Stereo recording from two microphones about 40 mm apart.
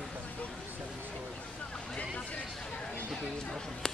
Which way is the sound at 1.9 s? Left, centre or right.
Left.